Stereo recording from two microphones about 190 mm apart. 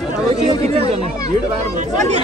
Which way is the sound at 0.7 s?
30° right (ahead or behind).